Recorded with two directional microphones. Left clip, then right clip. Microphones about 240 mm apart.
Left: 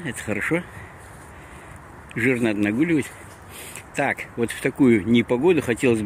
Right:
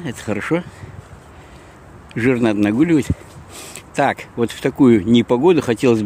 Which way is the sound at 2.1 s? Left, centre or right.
Centre.